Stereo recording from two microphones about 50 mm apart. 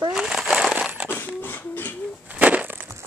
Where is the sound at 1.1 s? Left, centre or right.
Left.